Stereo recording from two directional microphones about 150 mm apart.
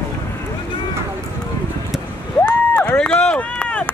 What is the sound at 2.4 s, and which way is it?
Run, 10° left (ahead or behind).